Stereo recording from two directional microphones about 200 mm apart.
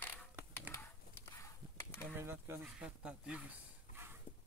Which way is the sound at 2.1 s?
10° right (ahead or behind).